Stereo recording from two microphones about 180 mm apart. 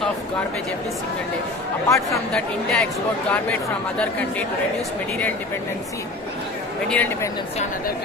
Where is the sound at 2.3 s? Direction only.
5° left (ahead or behind).